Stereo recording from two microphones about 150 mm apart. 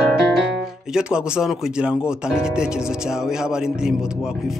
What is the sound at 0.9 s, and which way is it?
Music, 5° right (ahead or behind).